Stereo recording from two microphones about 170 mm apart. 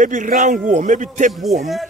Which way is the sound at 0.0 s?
50° right (ahead or behind).